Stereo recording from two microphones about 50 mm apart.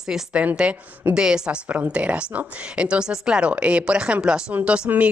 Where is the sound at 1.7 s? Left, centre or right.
Right.